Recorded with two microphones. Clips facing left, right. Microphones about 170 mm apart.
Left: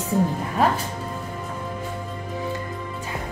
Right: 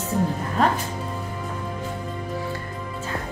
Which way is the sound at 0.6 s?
10° left (ahead or behind).